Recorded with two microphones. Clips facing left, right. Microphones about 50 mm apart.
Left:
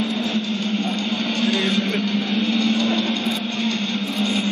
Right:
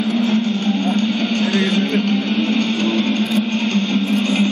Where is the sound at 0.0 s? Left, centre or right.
Right.